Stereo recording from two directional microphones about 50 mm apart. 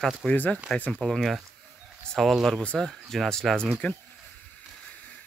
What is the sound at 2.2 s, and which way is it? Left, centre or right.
Speech, centre.